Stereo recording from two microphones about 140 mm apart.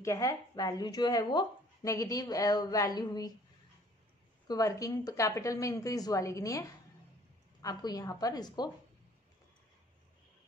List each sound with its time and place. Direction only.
0.0 s speech: 20° left (ahead or behind)
4.5 s speech: 25° left (ahead or behind)